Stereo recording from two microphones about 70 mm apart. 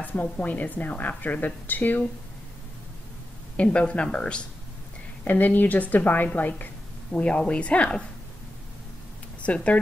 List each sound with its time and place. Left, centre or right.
0.0 s a woman's voice: left
3.5 s speech: centre
5.2 s a woman's voice: left
9.4 s speech: centre